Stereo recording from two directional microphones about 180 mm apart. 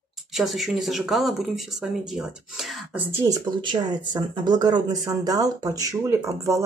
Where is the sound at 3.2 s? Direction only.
25° right (ahead or behind).